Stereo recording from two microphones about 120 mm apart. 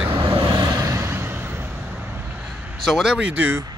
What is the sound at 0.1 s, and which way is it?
Vehicle, 20° right (ahead or behind).